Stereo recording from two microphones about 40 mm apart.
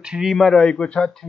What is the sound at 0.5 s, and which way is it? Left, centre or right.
Speech, left.